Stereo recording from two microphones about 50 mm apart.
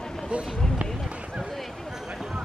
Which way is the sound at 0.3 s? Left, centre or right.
Right.